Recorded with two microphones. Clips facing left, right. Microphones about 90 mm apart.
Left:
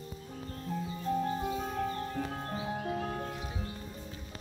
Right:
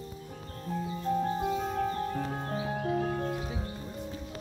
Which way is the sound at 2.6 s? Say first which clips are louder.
Right 5 dB; 15° right (ahead or behind).